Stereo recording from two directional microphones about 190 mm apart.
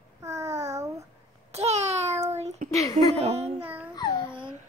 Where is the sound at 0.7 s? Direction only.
15° right (ahead or behind).